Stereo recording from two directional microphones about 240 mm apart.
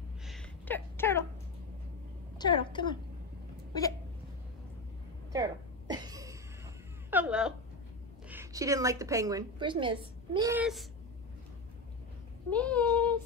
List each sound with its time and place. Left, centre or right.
0.3 s a sound: centre
2.3 s a woman's voice: centre
5.3 s a sound: centre
7.1 s a woman's voice: centre
10.5 s speech: centre
12.4 s speech: centre